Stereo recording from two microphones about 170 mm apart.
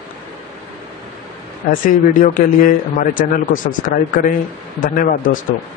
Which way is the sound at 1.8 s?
55° left (ahead or behind).